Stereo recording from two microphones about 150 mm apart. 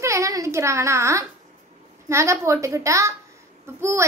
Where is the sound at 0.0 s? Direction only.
20° right (ahead or behind).